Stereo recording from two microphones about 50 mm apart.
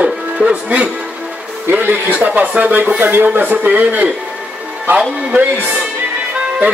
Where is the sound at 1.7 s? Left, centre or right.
Right.